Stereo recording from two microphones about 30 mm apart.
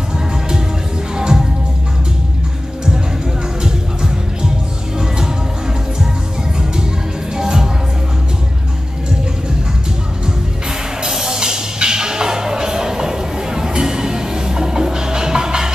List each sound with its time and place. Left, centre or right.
1.1 s music: right
3.6 s music: right
7.3 s music: centre
11.1 s music: centre